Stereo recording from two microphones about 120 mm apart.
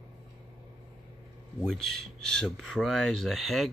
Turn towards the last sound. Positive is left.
turn(degrees=0)  # may be behind; listen again after turning